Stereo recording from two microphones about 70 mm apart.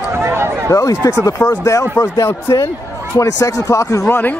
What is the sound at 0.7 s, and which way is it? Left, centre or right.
Speech, left.